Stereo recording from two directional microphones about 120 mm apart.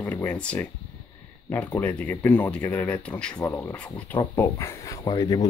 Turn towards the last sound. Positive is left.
turn(degrees=30)  # may be behind; listen again after turning